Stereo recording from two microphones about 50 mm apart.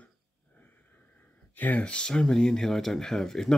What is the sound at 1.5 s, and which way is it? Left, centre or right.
Speech, left.